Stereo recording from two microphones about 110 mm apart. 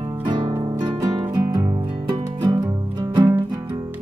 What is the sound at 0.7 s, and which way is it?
Music, 45° right (ahead or behind).